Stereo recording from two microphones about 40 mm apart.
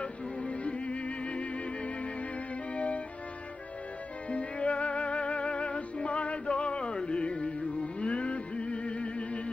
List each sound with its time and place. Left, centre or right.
0.0 s music: left
2.7 s music: left
4.3 s music: left